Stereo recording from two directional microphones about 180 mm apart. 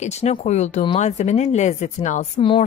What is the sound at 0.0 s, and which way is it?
A woman's voice, 40° left (ahead or behind).